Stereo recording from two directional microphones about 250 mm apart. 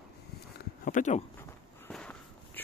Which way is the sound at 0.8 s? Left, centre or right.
Left.